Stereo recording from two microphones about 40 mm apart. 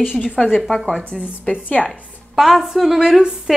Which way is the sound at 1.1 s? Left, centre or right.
Left.